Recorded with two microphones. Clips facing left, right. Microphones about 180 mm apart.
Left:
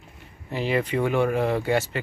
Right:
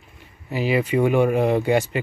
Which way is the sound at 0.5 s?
5° right (ahead or behind).